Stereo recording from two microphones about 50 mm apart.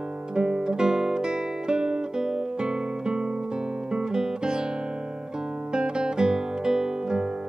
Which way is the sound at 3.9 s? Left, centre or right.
Centre.